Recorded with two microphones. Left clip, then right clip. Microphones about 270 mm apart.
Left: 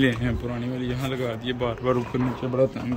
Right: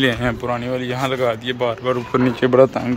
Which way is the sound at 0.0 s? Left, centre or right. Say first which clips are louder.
Right 6 dB; centre.